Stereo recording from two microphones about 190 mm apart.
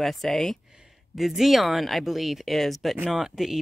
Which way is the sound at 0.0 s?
Centre (ahead or behind).